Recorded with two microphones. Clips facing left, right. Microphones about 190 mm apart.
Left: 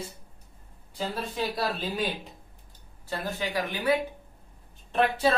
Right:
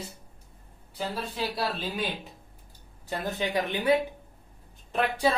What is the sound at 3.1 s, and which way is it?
Speech, 20° right (ahead or behind).